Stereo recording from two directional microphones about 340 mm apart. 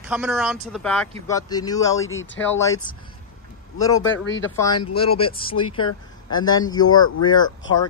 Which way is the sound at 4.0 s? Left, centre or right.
Left.